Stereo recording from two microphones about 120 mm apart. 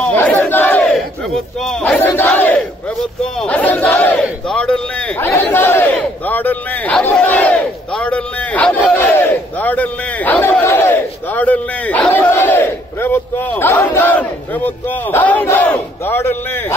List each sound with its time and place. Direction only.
0.0 s battle cry: 15° left (ahead or behind)
0.9 s speech: centre (ahead or behind)
8.9 s a sound: 15° left (ahead or behind)
11.4 s speech: 10° left (ahead or behind)